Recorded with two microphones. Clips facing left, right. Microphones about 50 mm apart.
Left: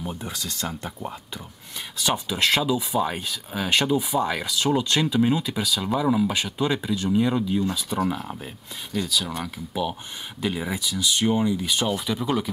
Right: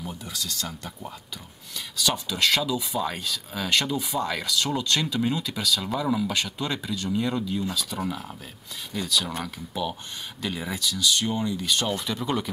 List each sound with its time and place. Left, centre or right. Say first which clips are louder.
0.0 s speech: left 3 dB; left
8.9 s speech: left 1 dB; centre